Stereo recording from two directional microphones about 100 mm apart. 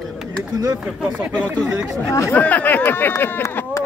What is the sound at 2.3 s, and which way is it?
Speech, 15° left (ahead or behind).